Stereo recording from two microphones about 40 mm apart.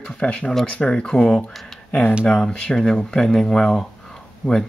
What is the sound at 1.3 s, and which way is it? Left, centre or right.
Speech, centre.